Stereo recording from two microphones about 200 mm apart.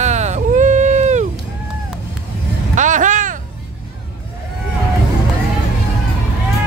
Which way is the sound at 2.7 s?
40° right (ahead or behind).